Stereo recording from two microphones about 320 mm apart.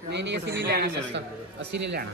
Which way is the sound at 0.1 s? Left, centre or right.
Right.